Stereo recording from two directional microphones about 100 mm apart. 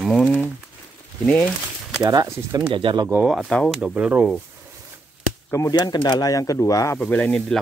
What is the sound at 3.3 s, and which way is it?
Speech, centre (ahead or behind).